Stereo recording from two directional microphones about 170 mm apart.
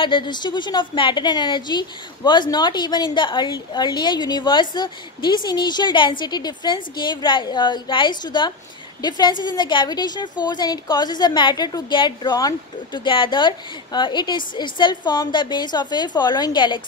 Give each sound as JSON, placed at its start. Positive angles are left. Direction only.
{"t": 0.0, "sound": "a woman's voice", "side_deg": 30}